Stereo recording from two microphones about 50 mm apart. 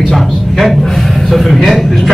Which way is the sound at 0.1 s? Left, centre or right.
Centre.